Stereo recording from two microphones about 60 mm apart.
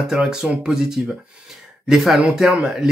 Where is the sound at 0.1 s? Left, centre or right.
Centre.